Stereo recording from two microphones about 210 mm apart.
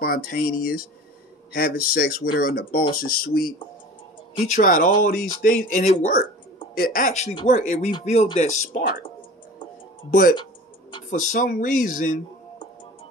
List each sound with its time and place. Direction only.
0.0 s speech: 45° left (ahead or behind)
10.3 s music: 20° left (ahead or behind)
11.1 s speech: 40° left (ahead or behind)